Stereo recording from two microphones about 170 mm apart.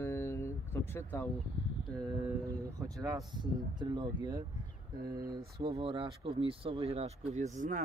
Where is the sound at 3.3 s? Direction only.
25° right (ahead or behind).